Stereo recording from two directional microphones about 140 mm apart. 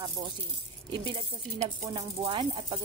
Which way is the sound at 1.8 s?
35° right (ahead or behind).